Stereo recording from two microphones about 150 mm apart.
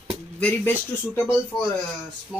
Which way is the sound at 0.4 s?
10° left (ahead or behind).